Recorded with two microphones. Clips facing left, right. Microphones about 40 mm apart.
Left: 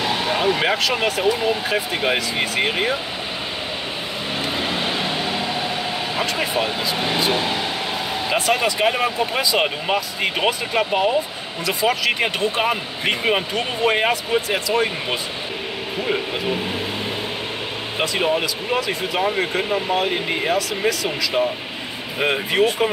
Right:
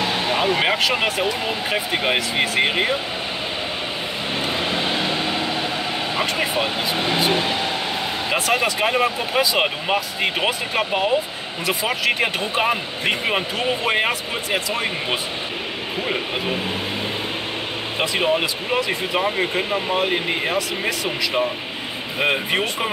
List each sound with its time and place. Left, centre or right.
0.3 s speech: right
2.0 s speech: centre
8.3 s speech: centre
12.1 s speech: centre
18.2 s speech: centre
21.0 s speech: right
22.2 s speech: centre